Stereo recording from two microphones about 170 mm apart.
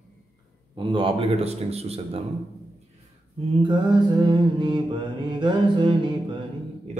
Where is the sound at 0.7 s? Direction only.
30° right (ahead or behind).